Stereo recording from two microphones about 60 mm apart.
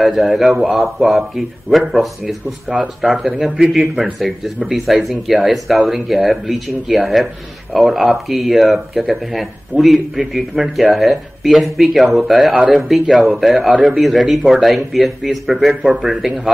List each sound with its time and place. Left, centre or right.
0.0 s a man's voice: centre
2.2 s speech: right
3.0 s speech: centre